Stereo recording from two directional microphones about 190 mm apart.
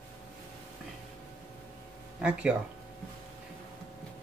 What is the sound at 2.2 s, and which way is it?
Speech, 5° right (ahead or behind).